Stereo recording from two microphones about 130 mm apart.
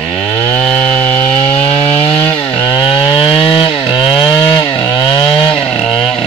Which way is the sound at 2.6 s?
40° left (ahead or behind).